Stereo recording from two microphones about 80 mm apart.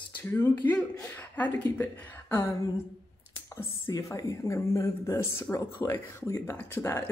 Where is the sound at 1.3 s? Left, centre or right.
Centre.